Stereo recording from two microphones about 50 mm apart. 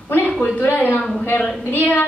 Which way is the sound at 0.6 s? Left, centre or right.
Left.